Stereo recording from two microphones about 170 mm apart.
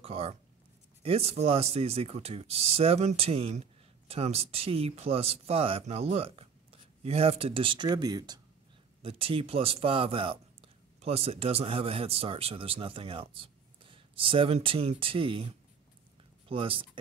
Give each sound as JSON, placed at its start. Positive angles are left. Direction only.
{"t": 0.0, "sound": "speech", "side_deg": -35}